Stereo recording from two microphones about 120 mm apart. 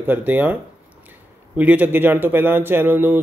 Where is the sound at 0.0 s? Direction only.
15° right (ahead or behind).